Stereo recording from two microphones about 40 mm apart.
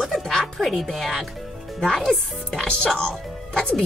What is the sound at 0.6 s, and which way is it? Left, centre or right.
Speech, centre.